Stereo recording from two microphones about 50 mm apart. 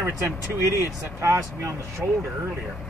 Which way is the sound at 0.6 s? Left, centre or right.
Right.